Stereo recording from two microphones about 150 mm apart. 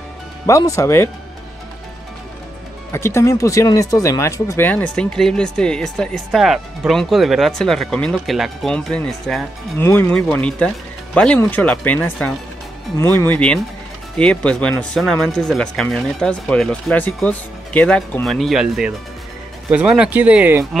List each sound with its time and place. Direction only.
0.5 s speech: 20° left (ahead or behind)
2.9 s speech: 20° left (ahead or behind); by 9.5 s centre (ahead or behind)
9.8 s speech: 15° left (ahead or behind); by 20.6 s 10° right (ahead or behind)